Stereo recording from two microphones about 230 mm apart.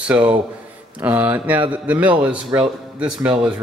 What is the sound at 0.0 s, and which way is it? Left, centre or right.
Speech, centre.